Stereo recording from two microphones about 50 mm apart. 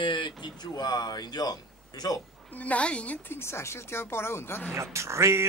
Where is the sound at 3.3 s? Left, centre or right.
Left.